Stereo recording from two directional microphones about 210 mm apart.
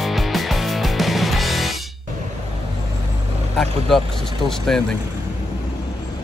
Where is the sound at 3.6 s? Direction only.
Centre (ahead or behind).